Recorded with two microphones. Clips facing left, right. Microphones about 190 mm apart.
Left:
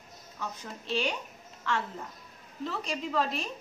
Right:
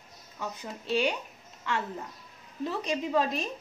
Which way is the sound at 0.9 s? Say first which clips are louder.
Right 3 dB; 10° right (ahead or behind).